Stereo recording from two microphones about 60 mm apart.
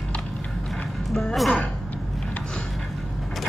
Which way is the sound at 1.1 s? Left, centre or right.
Centre.